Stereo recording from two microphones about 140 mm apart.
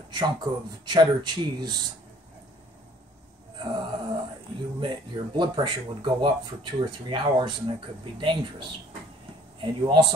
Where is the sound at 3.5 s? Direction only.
30° right (ahead or behind).